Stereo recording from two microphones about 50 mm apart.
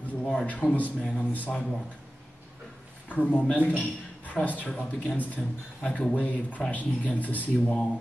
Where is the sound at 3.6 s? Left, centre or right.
Left.